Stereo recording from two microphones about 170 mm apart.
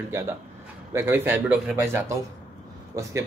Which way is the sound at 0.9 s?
15° right (ahead or behind).